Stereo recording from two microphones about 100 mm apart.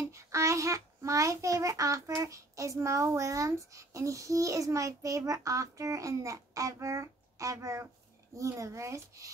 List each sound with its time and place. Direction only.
0.1 s a child's voice: 30° right (ahead or behind)